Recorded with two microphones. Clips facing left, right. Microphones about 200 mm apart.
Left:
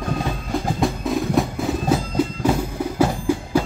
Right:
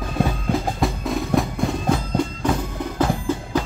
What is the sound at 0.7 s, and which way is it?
Music, centre (ahead or behind).